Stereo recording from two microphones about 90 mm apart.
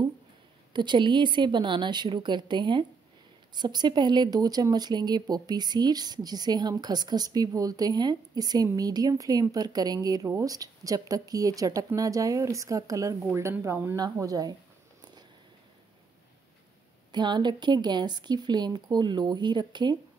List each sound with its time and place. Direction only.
0.7 s a woman's voice: 60° right (ahead or behind); by 13.9 s 25° right (ahead or behind)
14.1 s speech: 40° right (ahead or behind)
17.1 s a woman's voice: 55° right (ahead or behind)